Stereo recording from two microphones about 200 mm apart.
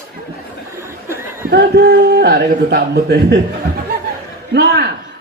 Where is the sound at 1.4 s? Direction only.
55° right (ahead or behind).